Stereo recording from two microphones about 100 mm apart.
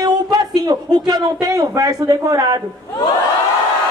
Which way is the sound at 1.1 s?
40° right (ahead or behind).